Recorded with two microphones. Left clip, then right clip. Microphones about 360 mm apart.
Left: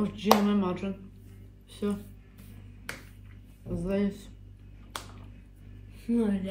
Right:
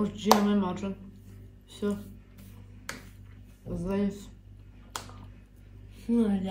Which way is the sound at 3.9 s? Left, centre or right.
Centre.